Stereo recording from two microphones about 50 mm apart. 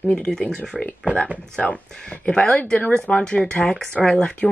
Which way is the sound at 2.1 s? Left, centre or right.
Left.